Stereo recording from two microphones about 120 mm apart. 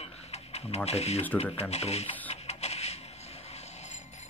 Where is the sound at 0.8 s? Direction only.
60° left (ahead or behind).